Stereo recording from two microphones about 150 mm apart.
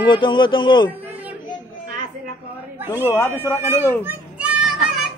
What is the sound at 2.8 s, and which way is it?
Speech, 15° right (ahead or behind).